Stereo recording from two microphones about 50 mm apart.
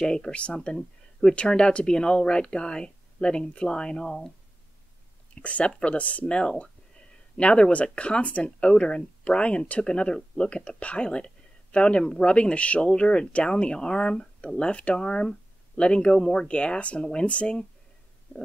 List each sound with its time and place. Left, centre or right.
0.0 s speech: centre
5.3 s speech: left